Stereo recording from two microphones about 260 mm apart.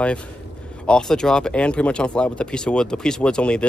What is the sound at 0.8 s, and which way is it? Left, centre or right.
Speech, centre.